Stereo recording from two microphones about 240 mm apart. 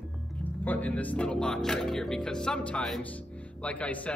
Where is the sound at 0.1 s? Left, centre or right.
Centre.